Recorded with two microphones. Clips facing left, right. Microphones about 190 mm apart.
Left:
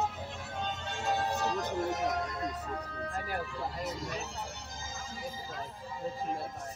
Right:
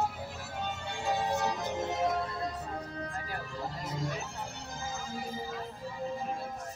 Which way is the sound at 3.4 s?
40° right (ahead or behind).